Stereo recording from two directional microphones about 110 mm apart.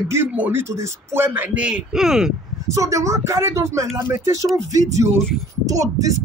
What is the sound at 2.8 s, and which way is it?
A man's voice, 30° right (ahead or behind).